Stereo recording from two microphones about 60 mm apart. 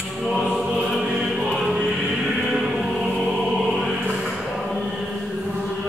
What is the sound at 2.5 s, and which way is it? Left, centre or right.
Choir, centre.